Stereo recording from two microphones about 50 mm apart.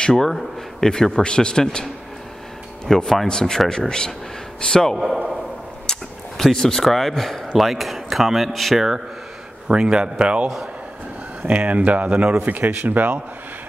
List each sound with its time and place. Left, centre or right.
0.0 s speech: centre
2.9 s speech: centre
4.9 s a man's voice: centre
5.9 s speech: centre
9.7 s speech: centre; by 13.2 s right